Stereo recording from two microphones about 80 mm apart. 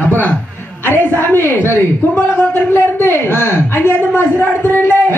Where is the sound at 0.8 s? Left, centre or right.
Left.